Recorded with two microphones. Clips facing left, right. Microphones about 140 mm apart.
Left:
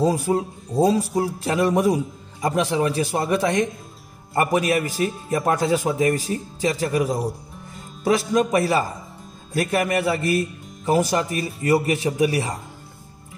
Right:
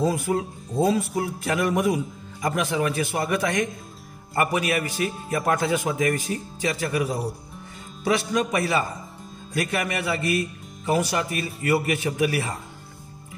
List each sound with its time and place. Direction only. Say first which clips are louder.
0.0 s speech: left 3 dB; 35° left (ahead or behind)